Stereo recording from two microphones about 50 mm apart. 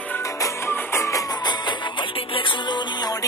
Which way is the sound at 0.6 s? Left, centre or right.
Left.